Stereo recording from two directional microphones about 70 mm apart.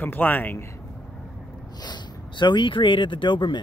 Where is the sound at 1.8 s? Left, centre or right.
Left.